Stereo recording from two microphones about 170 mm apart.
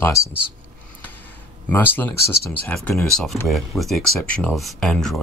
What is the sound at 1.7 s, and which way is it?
Speech, 10° left (ahead or behind).